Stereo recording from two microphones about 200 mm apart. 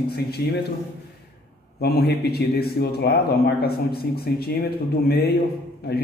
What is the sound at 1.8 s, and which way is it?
Speech, 50° left (ahead or behind).